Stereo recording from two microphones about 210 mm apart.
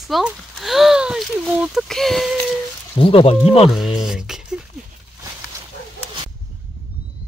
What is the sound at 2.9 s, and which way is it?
Speech, 25° left (ahead or behind).